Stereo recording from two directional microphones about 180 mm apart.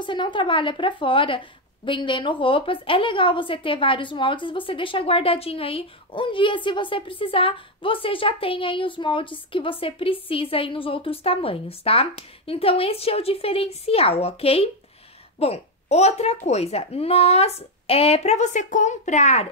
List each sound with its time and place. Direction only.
0.0 s speech: 25° left (ahead or behind)